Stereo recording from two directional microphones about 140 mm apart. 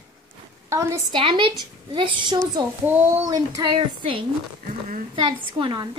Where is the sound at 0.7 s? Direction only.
20° right (ahead or behind).